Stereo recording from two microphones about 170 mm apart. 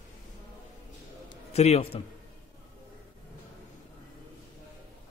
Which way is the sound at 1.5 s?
40° left (ahead or behind).